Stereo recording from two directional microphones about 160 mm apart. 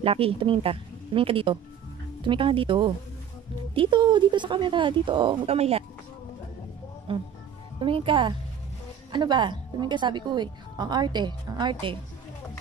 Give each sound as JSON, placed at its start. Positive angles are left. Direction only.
{"t": 0.0, "sound": "speech", "side_deg": -35}
{"t": 7.1, "sound": "a woman's voice", "side_deg": -35}